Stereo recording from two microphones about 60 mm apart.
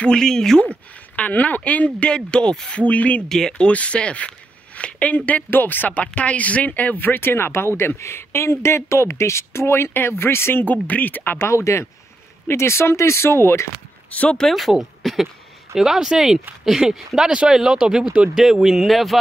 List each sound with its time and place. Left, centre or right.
0.0 s speech: centre
1.1 s speech: left
2.8 s speech: left
3.3 s speech: centre; by 10.6 s left
10.6 s speech: left
11.3 s speech: left
14.5 s speech: centre